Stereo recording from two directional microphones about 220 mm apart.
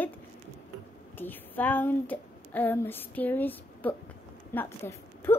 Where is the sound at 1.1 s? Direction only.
10° left (ahead or behind).